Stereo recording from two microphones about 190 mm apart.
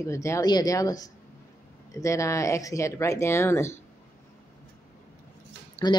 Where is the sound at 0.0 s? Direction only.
15° left (ahead or behind).